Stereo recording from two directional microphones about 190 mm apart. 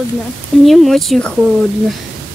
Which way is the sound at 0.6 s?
Centre (ahead or behind).